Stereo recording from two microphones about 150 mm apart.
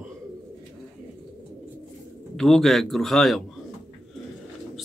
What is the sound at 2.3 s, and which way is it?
Speech, centre (ahead or behind).